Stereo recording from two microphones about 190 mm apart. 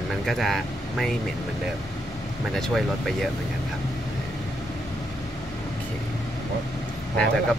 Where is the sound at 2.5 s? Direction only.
Centre (ahead or behind).